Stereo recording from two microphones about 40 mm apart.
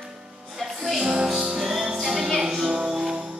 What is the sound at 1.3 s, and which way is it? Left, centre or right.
Music, right.